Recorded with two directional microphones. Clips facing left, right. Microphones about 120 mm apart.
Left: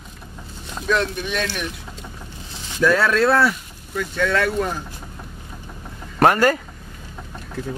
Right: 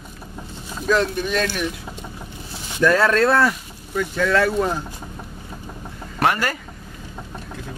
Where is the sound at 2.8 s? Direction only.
Centre (ahead or behind).